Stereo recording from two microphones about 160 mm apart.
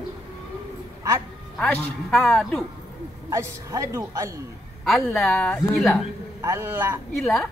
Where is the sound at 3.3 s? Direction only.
20° right (ahead or behind).